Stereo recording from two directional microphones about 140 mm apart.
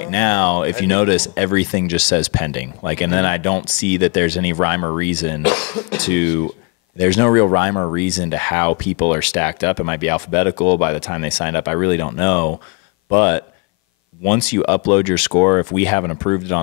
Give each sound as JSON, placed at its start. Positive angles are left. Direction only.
{"t": 0.0, "sound": "speech", "side_deg": 15}